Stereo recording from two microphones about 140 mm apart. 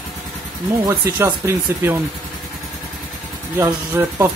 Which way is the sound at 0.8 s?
20° right (ahead or behind).